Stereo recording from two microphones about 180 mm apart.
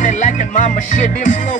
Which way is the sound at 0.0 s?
45° left (ahead or behind).